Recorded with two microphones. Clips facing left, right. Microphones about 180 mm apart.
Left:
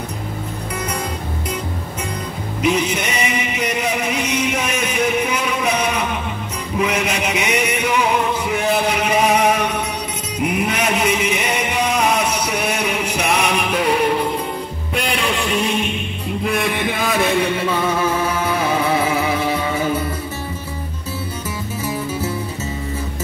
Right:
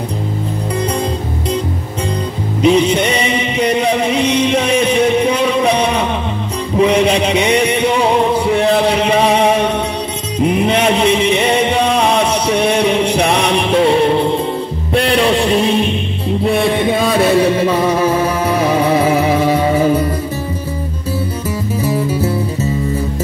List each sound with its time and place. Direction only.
2.6 s music: 30° right (ahead or behind)
6.8 s a sound: 30° right (ahead or behind)
10.4 s music: 30° right (ahead or behind)
21.8 s music: 35° right (ahead or behind)